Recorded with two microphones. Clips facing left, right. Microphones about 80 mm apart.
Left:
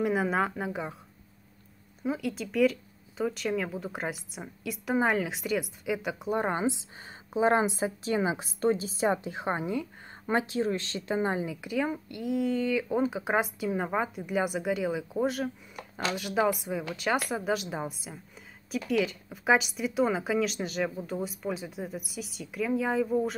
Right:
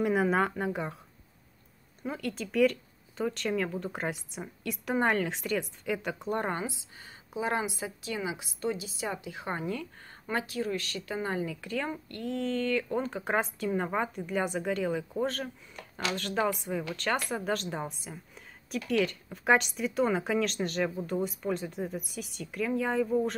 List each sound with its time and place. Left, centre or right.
0.0 s speech: centre
2.0 s speech: centre
6.5 s a woman's voice: left; by 23.3 s centre